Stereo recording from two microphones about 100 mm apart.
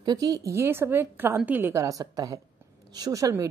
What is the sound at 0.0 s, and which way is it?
Speech, 40° right (ahead or behind).